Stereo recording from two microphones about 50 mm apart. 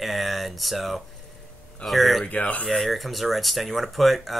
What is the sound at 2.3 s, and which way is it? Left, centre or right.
Speech, left.